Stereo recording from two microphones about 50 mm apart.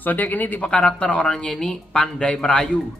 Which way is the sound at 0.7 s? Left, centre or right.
Centre.